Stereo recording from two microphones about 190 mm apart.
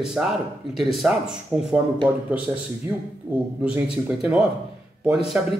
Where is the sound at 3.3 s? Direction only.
10° right (ahead or behind).